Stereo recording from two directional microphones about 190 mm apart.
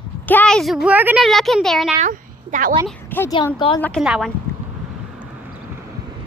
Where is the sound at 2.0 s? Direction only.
45° right (ahead or behind).